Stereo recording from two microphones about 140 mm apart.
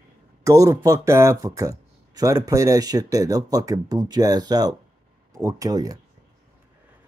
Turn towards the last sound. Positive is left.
turn(degrees=-25)  # may be behind; listen again after turning